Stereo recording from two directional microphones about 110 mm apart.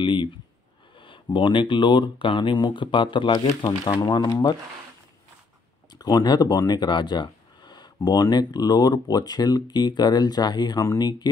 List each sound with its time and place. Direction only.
0.0 s speech: 45° left (ahead or behind)
5.9 s speech: 35° left (ahead or behind)